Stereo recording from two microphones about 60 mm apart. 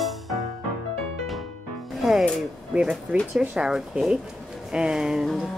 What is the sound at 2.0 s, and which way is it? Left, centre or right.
Music, centre.